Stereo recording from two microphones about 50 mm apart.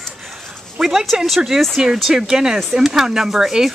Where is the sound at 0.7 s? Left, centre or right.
Centre.